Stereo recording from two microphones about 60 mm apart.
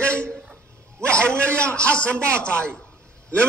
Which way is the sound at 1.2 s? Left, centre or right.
Right.